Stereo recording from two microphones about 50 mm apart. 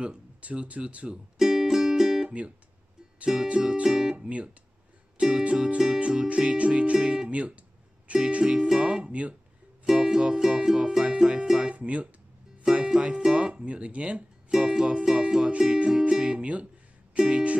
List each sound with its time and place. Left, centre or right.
0.0 s speech: right
1.4 s music: centre
2.2 s speech: right
3.3 s music: right
5.1 s speech: right
7.2 s speech: right
8.6 s music: centre
9.0 s speech: right
9.8 s music: centre
13.3 s speech: right
14.5 s music: centre
15.0 s speech: centre